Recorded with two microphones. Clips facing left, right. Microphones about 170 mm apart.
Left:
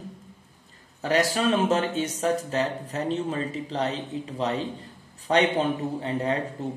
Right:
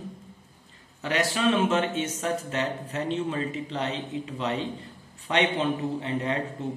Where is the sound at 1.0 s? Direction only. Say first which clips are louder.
Left 2 dB; 40° left (ahead or behind).